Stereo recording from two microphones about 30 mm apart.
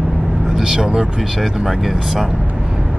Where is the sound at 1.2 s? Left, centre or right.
Centre.